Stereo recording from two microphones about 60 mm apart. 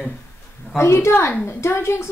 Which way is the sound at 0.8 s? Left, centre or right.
Left.